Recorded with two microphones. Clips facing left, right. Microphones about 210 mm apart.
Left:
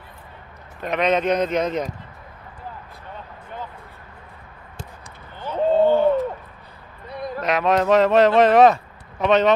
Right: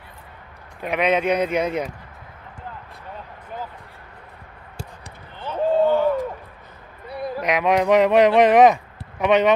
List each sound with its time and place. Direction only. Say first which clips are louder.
0.8 s a man's voice: even; 10° right (ahead or behind)
5.4 s run: left 1 dB; 15° left (ahead or behind)
7.1 s speech: even; 10° right (ahead or behind)